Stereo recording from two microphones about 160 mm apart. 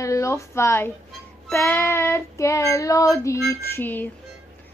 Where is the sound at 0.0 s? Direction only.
20° left (ahead or behind).